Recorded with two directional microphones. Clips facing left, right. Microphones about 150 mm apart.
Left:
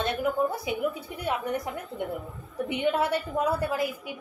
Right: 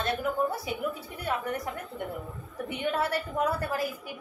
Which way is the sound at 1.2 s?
15° left (ahead or behind).